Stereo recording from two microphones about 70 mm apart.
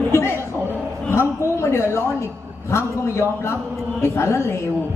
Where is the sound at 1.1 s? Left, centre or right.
Left.